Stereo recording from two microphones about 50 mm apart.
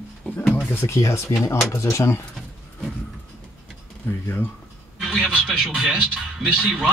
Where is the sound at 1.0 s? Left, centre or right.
Left.